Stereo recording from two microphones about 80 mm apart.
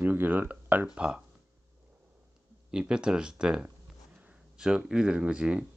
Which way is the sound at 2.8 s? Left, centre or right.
Centre.